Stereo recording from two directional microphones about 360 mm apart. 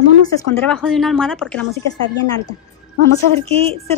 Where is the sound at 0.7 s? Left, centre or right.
Centre.